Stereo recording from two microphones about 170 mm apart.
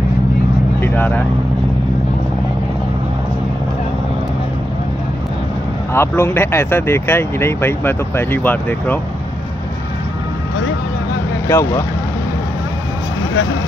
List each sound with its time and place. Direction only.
0.7 s vehicle: 10° left (ahead or behind)
5.9 s speech: 15° left (ahead or behind)
11.4 s speech: 15° left (ahead or behind)